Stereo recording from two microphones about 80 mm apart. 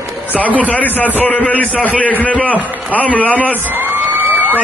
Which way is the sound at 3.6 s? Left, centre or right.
Right.